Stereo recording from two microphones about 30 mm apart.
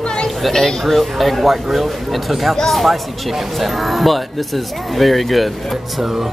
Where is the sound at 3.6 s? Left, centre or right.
Centre.